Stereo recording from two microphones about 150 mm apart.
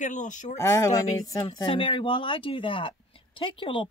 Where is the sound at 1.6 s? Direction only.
35° left (ahead or behind).